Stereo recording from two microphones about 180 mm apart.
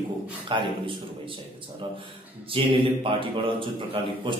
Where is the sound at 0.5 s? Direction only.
25° right (ahead or behind).